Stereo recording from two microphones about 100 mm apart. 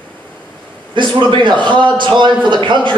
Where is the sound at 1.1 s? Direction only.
50° right (ahead or behind).